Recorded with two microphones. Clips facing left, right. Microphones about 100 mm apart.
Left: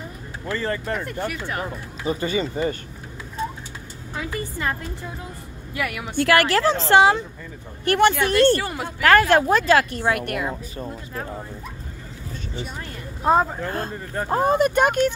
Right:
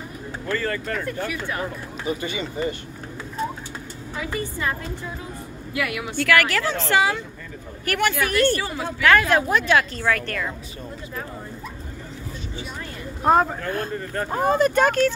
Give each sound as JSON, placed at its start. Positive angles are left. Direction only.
{"t": 0.5, "sound": "speech", "side_deg": 20}
{"t": 2.0, "sound": "speech", "side_deg": 35}
{"t": 5.8, "sound": "speech", "side_deg": 40}
{"t": 9.9, "sound": "speech", "side_deg": 20}
{"t": 13.2, "sound": "speech", "side_deg": 0}
{"t": 13.6, "sound": "speech", "side_deg": 25}
{"t": 13.9, "sound": "speech", "side_deg": 15}